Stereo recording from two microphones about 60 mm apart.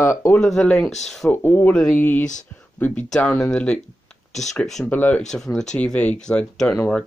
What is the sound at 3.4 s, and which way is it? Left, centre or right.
Speech, centre.